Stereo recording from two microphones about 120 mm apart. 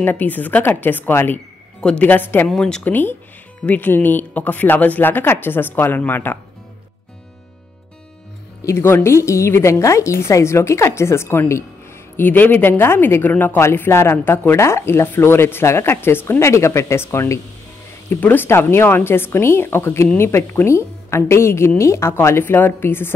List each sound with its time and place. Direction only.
0.0 s speech: 15° left (ahead or behind)
2.5 s speech: 5° left (ahead or behind)
8.6 s a woman's voice: 20° left (ahead or behind)